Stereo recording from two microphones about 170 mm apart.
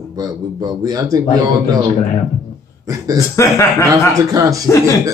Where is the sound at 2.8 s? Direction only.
20° right (ahead or behind).